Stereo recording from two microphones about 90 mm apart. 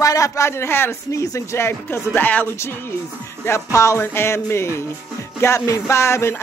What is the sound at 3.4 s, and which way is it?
Speech, 35° left (ahead or behind).